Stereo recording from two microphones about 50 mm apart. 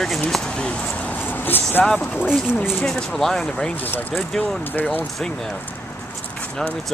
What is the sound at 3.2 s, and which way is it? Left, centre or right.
Speech, centre.